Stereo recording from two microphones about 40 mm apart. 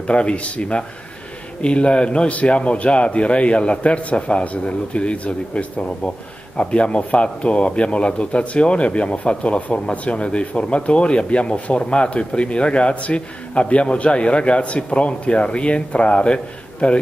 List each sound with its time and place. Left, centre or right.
0.0 s a man's voice: left